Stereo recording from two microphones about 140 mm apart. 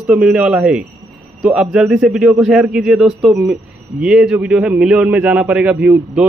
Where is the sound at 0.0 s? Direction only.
5° right (ahead or behind).